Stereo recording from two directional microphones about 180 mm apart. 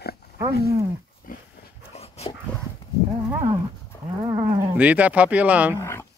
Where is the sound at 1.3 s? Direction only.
50° left (ahead or behind).